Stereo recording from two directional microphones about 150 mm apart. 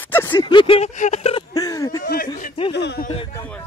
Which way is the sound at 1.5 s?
20° left (ahead or behind).